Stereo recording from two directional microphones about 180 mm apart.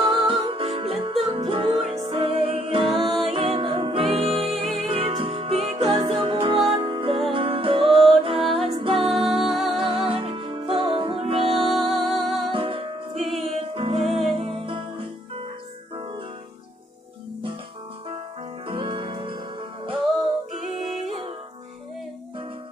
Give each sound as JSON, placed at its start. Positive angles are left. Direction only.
{"t": 0.0, "sound": "music", "side_deg": -30}
{"t": 9.3, "sound": "music", "side_deg": 0}
{"t": 10.0, "sound": "music", "side_deg": -30}
{"t": 11.5, "sound": "music", "side_deg": 0}
{"t": 12.4, "sound": "music", "side_deg": -30}
{"t": 18.7, "sound": "music", "side_deg": -25}